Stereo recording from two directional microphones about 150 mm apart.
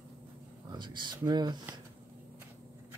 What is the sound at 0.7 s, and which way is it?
Speech, 30° right (ahead or behind).